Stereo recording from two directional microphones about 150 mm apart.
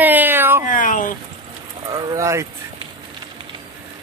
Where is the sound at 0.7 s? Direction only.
60° left (ahead or behind).